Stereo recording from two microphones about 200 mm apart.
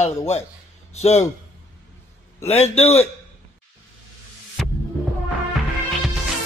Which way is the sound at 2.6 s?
30° left (ahead or behind).